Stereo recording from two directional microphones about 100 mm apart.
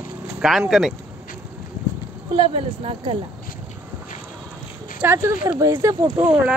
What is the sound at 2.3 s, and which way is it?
Speech, 65° right (ahead or behind).